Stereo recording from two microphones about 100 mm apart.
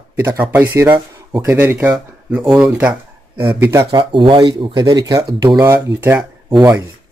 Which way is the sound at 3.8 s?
55° right (ahead or behind).